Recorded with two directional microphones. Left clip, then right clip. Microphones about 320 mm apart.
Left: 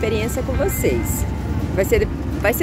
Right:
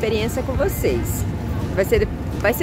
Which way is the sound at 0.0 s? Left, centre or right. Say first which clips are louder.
Even; centre.